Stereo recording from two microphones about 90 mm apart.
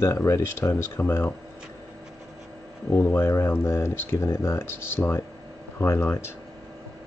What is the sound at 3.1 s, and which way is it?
Speech, 25° left (ahead or behind).